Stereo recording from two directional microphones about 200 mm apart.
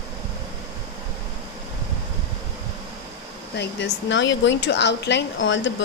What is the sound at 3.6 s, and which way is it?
Speech, 60° left (ahead or behind).